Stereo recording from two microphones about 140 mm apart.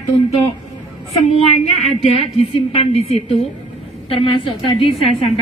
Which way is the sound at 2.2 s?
45° left (ahead or behind).